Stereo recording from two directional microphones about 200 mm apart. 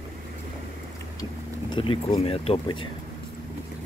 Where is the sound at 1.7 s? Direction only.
25° left (ahead or behind).